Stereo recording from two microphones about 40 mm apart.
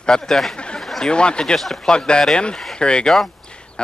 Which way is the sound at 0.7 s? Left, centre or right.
Centre.